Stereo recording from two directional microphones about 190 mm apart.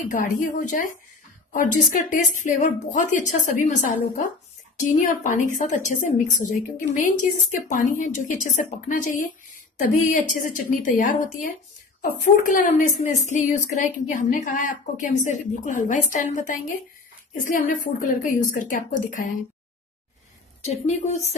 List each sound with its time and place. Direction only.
0.0 s a woman's voice: 45° left (ahead or behind)
20.7 s speech: 35° left (ahead or behind)